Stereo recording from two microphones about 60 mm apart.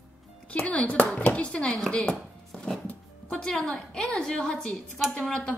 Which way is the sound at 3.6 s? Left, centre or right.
Centre.